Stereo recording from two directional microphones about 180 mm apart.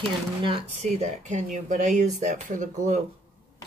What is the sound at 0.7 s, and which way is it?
Speech, 40° right (ahead or behind).